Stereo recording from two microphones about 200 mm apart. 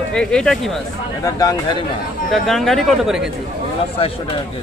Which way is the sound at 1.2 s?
15° left (ahead or behind).